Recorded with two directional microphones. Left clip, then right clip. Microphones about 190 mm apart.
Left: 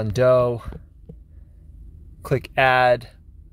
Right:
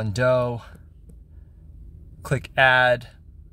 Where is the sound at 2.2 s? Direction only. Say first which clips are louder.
Even; 15° left (ahead or behind).